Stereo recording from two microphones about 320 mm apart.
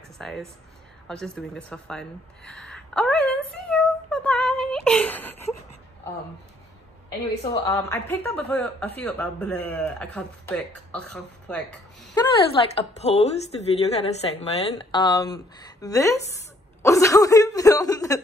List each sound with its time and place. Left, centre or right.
0.2 s speech: centre
3.7 s a sound: centre
7.6 s speech: centre
12.2 s a woman's voice: centre